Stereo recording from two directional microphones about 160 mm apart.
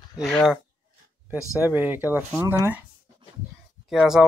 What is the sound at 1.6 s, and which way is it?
Speech, 10° right (ahead or behind).